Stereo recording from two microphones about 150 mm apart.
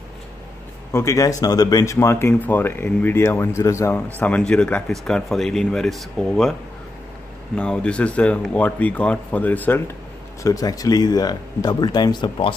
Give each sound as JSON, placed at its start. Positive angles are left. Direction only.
{"t": 0.9, "sound": "speech", "side_deg": 20}
{"t": 7.5, "sound": "speech", "side_deg": 5}
{"t": 10.4, "sound": "speech", "side_deg": 25}